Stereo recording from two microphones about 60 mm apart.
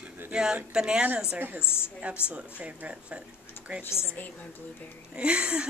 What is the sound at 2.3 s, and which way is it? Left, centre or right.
Speech, right.